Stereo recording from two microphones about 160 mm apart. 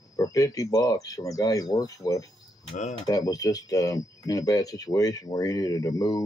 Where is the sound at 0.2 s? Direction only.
20° left (ahead or behind).